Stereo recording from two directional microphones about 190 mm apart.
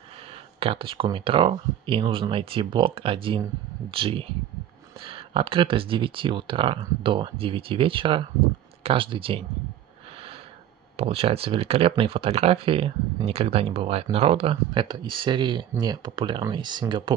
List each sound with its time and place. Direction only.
0.6 s speech: 30° right (ahead or behind)
11.0 s speech: 30° right (ahead or behind)